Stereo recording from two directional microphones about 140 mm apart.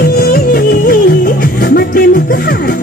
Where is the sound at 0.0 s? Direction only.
90° left.